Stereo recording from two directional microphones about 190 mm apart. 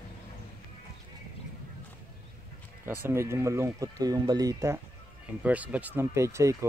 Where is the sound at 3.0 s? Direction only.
10° right (ahead or behind).